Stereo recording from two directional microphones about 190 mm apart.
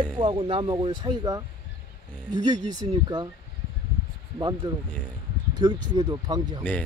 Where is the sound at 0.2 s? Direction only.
30° right (ahead or behind).